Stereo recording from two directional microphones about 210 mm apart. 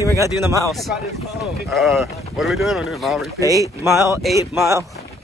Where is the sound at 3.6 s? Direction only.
15° right (ahead or behind).